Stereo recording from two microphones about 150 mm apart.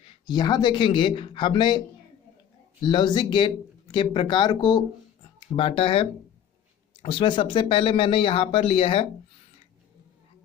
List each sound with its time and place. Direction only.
0.0 s speech: 35° left (ahead or behind)
2.8 s speech: 30° left (ahead or behind)